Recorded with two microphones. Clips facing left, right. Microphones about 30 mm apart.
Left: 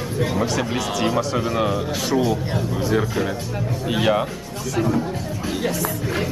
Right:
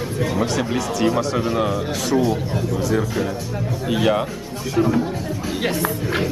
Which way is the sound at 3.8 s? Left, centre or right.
Centre.